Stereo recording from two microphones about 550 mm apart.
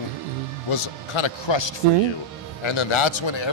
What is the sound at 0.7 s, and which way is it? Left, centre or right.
Speech, left.